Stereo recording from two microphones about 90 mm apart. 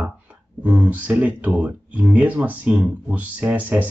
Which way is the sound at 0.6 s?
20° right (ahead or behind).